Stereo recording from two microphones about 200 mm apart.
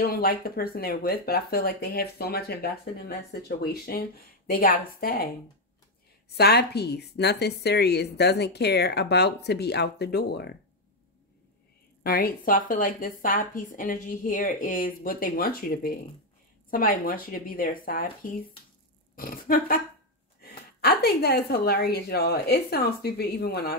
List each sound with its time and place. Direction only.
0.0 s speech: 50° left (ahead or behind)
6.3 s a woman's voice: 55° left (ahead or behind)
12.0 s speech: 50° left (ahead or behind)
19.1 s a woman's voice: 45° left (ahead or behind)